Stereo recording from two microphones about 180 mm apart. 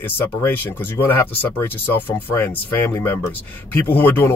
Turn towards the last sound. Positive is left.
turn(degrees=10)  # may be behind; listen again after turning